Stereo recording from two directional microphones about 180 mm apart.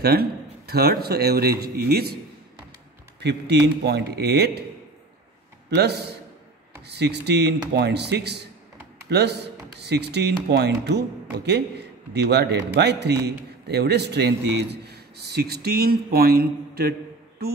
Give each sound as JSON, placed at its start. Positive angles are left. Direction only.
{"t": 0.0, "sound": "a man's voice", "side_deg": -60}
{"t": 3.2, "sound": "a man's voice", "side_deg": -70}
{"t": 5.8, "sound": "a man's voice", "side_deg": -65}